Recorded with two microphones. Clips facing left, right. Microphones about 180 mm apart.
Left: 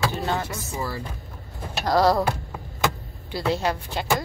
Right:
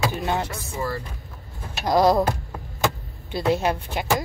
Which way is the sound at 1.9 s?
20° right (ahead or behind).